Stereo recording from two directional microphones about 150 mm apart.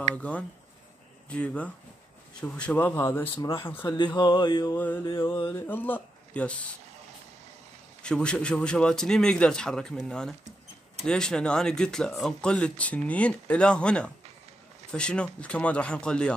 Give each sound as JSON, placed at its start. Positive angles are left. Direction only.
{"t": 0.1, "sound": "speech", "side_deg": 10}
{"t": 3.3, "sound": "speech", "side_deg": 35}
{"t": 4.7, "sound": "speech", "side_deg": 10}
{"t": 8.0, "sound": "a man's voice", "side_deg": 5}